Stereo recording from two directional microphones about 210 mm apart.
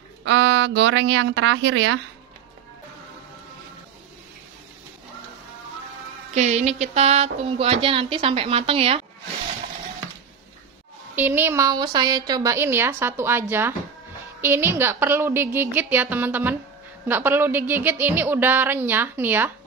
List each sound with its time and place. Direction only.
0.2 s speech: 60° right (ahead or behind)
6.3 s speech: 35° right (ahead or behind)
11.1 s a woman's voice: 10° right (ahead or behind)